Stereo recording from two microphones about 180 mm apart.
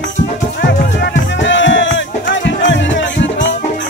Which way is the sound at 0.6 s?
80° left.